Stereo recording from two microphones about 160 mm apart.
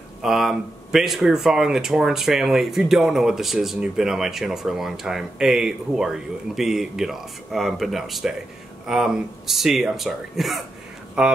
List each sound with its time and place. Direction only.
0.2 s speech: centre (ahead or behind)